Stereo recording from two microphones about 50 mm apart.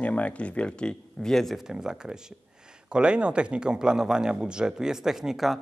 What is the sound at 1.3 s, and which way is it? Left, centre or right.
Speech, centre.